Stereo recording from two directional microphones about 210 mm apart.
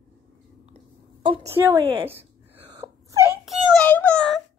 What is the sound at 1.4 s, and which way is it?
Speech, 10° right (ahead or behind).